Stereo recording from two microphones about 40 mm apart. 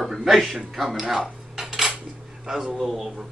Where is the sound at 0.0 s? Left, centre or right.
Centre.